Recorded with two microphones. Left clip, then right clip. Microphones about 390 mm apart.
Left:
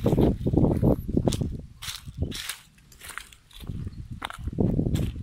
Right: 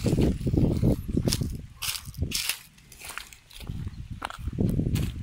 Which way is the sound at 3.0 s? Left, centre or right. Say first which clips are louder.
Even; centre.